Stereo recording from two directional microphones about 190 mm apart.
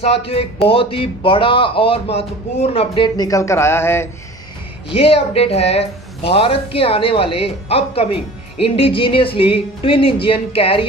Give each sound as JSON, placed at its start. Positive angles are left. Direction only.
{"t": 0.0, "sound": "speech", "side_deg": 30}
{"t": 4.8, "sound": "speech", "side_deg": 30}